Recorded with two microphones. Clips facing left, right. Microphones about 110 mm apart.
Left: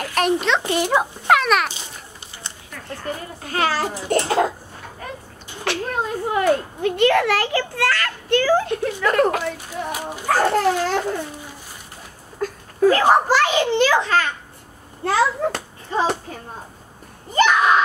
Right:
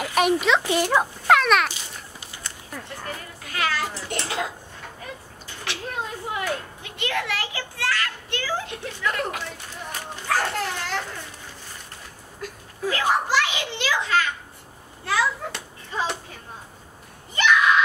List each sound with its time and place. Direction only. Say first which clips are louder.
0.0 s a sound: left 1 dB; 5° right (ahead or behind)
0.8 s a child's voice: left 2 dB; 5° left (ahead or behind)
3.1 s a child's voice: left 7 dB; 35° left (ahead or behind)
5.6 s a child's voice: left 7 dB; 50° left (ahead or behind)
10.2 s a child's voice: left 8 dB; 40° left (ahead or behind)
12.4 s a child's voice: left 14 dB; 45° left (ahead or behind)
17.3 s a sound: left 4 dB; 40° left (ahead or behind)